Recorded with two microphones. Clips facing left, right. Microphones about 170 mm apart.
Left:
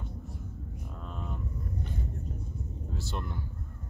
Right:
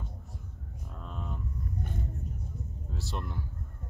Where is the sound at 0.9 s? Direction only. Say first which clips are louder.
Even; centre (ahead or behind).